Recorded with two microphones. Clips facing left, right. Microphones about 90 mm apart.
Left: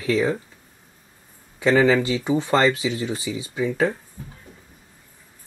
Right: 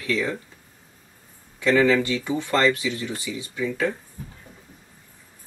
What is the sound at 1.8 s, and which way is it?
Speech, 25° left (ahead or behind).